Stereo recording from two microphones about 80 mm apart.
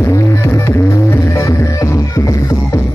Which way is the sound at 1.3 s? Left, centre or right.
Left.